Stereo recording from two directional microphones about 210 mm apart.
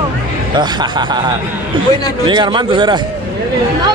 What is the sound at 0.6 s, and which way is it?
Speech, 20° right (ahead or behind).